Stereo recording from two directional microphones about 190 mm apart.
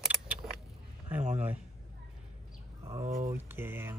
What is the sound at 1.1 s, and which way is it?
Speech, 10° right (ahead or behind).